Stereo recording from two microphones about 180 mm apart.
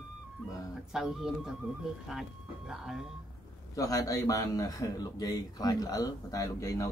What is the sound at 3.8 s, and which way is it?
Speech, 20° left (ahead or behind).